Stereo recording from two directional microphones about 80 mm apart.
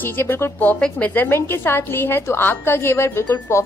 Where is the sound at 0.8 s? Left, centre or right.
Centre; by 3.6 s left.